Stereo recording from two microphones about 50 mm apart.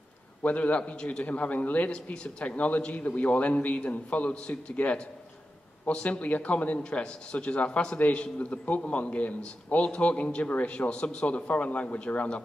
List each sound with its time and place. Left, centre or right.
0.4 s a man's voice: left